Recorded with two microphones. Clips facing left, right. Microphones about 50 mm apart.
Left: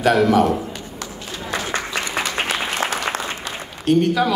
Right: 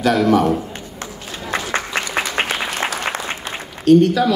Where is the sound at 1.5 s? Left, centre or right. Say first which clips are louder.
Right 3 dB; right.